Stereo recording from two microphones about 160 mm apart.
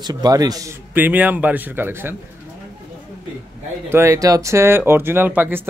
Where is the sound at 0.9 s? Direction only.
10° right (ahead or behind).